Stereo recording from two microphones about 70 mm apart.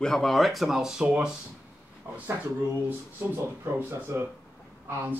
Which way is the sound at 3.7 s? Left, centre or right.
Right.